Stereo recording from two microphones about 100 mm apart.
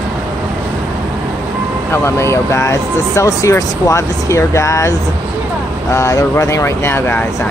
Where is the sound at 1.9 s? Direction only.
25° left (ahead or behind).